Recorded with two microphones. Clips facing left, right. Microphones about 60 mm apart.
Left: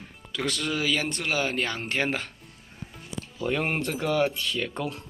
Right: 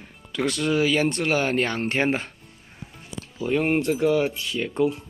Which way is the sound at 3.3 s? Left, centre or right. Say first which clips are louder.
Right 5 dB; centre.